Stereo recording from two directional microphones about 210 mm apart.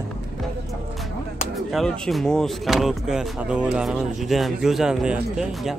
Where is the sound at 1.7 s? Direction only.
Centre (ahead or behind).